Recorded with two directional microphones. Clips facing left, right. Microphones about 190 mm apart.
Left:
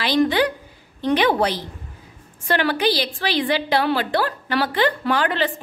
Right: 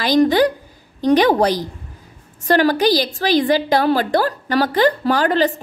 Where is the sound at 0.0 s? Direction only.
40° right (ahead or behind).